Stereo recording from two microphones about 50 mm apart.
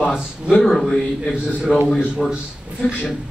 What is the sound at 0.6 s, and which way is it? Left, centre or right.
Speech, centre.